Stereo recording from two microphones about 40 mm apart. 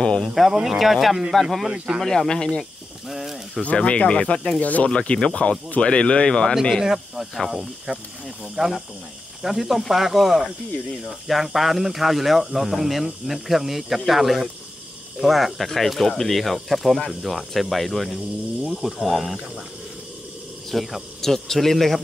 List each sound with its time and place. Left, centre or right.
0.0 s speech: left
0.3 s speech: centre
2.0 s speech: centre
3.1 s snake: centre
3.7 s speech: left
4.8 s speech: left
6.8 s speech: centre
9.4 s speech: centre
20.7 s speech: centre